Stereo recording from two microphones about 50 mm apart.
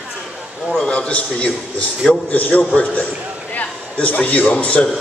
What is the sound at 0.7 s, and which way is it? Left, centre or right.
Speech, centre.